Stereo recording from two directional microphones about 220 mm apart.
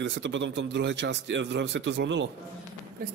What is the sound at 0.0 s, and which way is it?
A man's voice, 55° right (ahead or behind).